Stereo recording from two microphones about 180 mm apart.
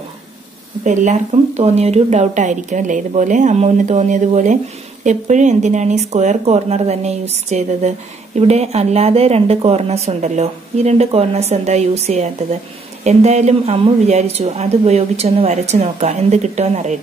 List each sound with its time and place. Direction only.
0.8 s a woman's voice: 40° right (ahead or behind)